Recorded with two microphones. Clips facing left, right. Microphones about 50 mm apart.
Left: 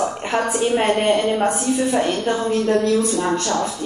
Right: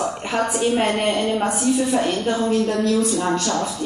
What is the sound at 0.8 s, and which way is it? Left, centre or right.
A woman's voice, left.